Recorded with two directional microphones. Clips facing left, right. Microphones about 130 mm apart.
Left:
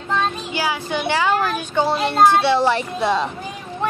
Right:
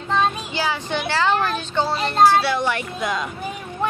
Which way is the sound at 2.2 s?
20° left (ahead or behind).